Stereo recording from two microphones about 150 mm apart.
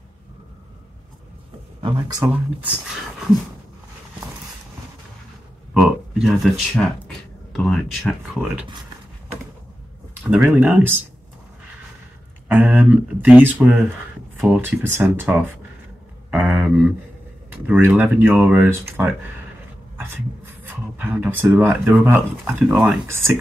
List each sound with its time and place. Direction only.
1.8 s speech: 30° right (ahead or behind)
2.2 s speech: 10° right (ahead or behind)
5.8 s a sound: 5° right (ahead or behind)
7.1 s speech: 5° left (ahead or behind)
10.3 s speech: 5° right (ahead or behind)
12.4 s speech: 10° right (ahead or behind)
20.0 s a sound: 10° right (ahead or behind)
21.5 s speech: 10° right (ahead or behind)